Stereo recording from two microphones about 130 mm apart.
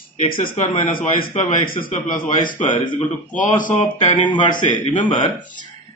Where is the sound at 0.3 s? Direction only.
90° left.